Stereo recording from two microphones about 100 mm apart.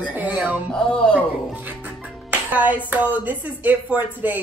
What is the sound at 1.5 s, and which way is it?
Music, 15° right (ahead or behind).